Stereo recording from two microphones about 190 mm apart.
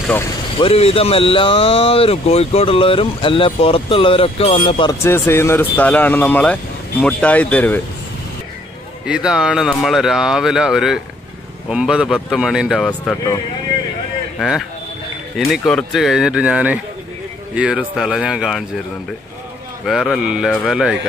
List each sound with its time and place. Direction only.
0.6 s speech: 30° left (ahead or behind)
5.0 s speech: 15° left (ahead or behind)
9.0 s speech: 5° right (ahead or behind)
15.3 s speech: centre (ahead or behind)
19.9 s speech: centre (ahead or behind)